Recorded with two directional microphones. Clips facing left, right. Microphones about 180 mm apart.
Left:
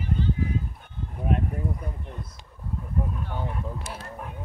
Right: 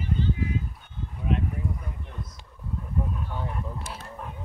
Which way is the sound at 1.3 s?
50° left (ahead or behind).